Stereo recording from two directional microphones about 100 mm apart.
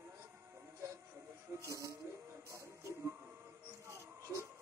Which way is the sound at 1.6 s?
30° right (ahead or behind).